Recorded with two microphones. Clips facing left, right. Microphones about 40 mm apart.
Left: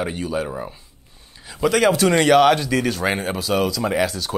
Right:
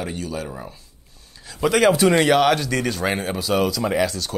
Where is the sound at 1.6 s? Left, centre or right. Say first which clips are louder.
Even; centre.